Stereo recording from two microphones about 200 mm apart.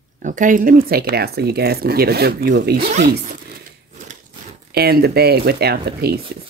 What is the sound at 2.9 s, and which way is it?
Speech, 40° right (ahead or behind).